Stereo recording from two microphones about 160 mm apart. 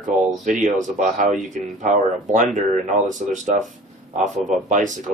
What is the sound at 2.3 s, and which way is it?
Speech, 50° right (ahead or behind).